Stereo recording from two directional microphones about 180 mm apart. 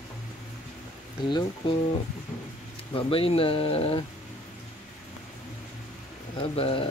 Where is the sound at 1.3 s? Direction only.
25° left (ahead or behind).